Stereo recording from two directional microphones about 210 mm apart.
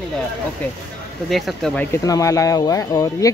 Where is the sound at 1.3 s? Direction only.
Centre (ahead or behind).